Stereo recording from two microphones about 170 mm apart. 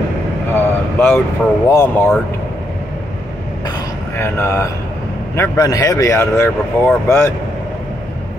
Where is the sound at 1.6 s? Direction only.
15° left (ahead or behind).